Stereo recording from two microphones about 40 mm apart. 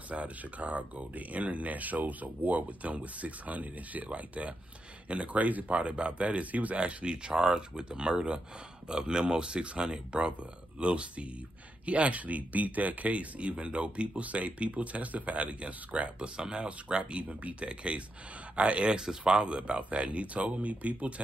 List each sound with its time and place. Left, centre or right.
0.1 s speech: right
5.8 s speech: right
6.8 s speech: right
16.3 s speech: right